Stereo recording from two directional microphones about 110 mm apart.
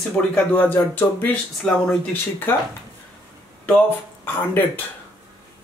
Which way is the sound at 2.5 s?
20° left (ahead or behind).